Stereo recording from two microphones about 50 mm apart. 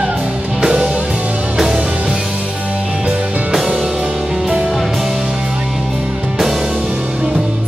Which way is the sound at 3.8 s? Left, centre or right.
Centre.